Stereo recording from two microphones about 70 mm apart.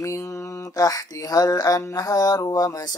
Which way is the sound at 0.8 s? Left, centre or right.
Left.